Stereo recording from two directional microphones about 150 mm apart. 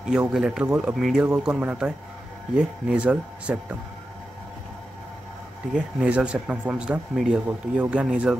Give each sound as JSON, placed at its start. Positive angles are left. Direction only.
{"t": 0.1, "sound": "speech", "side_deg": -5}
{"t": 5.8, "sound": "speech", "side_deg": -10}